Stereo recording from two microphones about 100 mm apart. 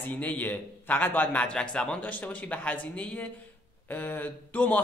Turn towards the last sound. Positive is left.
turn(degrees=15)  # may be behind; listen again after turning